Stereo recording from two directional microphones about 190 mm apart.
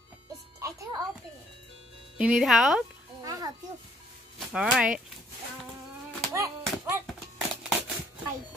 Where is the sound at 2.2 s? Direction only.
5° right (ahead or behind).